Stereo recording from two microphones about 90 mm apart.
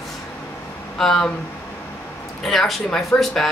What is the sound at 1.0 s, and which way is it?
Speech, 5° left (ahead or behind).